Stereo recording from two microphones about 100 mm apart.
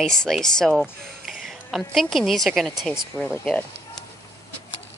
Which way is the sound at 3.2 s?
15° right (ahead or behind).